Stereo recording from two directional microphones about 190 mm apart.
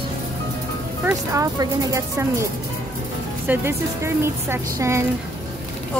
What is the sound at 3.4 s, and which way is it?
A woman's voice, 15° right (ahead or behind).